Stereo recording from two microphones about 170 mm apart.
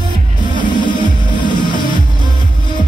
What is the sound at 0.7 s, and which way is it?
Music, 25° left (ahead or behind).